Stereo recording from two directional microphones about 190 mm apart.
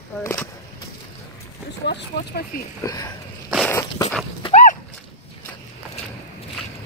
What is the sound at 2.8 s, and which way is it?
Speech, 20° left (ahead or behind).